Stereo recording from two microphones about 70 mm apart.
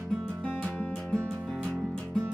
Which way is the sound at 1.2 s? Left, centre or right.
Centre.